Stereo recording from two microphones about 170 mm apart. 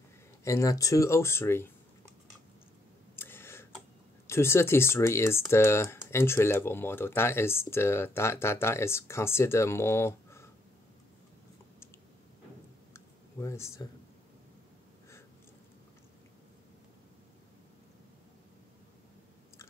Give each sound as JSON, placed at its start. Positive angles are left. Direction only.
{"t": 0.4, "sound": "speech", "side_deg": 20}
{"t": 3.2, "sound": "tick-tock", "side_deg": 15}
{"t": 4.3, "sound": "speech", "side_deg": 15}
{"t": 12.9, "sound": "a sound", "side_deg": 15}